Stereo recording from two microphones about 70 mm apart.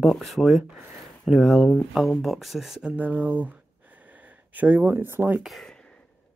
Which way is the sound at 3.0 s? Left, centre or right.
Right.